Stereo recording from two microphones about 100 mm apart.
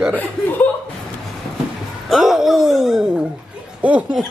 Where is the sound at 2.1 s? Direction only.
Centre (ahead or behind).